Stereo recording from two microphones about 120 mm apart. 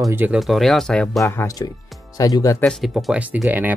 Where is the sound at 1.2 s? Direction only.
25° left (ahead or behind).